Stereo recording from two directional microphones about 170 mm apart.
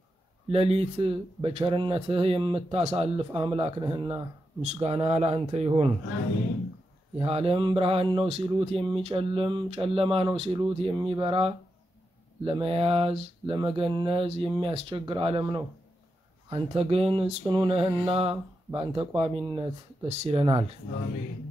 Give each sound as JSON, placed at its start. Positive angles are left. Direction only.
{"t": 0.5, "sound": "speech", "side_deg": -35}
{"t": 3.3, "sound": "speech", "side_deg": -25}
{"t": 7.2, "sound": "speech", "side_deg": -35}